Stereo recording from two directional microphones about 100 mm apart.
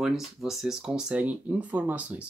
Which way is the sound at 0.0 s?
5° right (ahead or behind).